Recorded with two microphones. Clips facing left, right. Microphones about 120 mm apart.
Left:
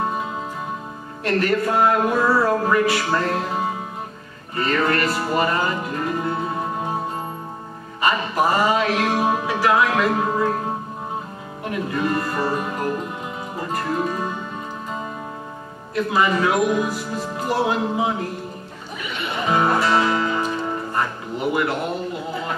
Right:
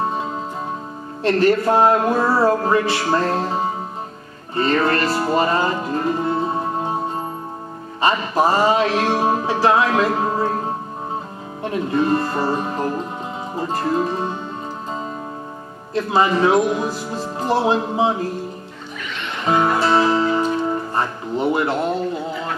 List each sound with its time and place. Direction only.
1.2 s music: 30° right (ahead or behind)
8.0 s music: 30° right (ahead or behind)
11.7 s music: 30° right (ahead or behind)
15.9 s music: 30° right (ahead or behind)
19.8 s music: 25° right (ahead or behind)